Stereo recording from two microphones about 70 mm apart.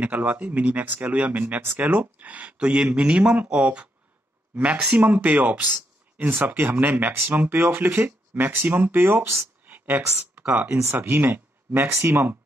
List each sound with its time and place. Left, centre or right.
0.0 s speech: right
9.7 s a sound: right
10.4 s speech: right